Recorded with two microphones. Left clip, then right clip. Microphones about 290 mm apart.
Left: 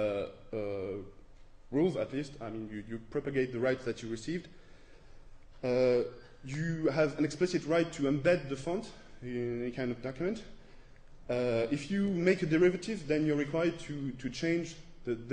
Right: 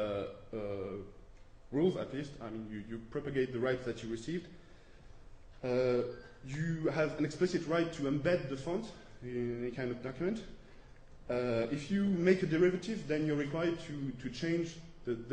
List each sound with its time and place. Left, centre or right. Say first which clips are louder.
0.0 s a sound: left 4 dB; left
1.7 s a man's voice: left 2 dB; left
5.6 s a man's voice: left 4 dB; left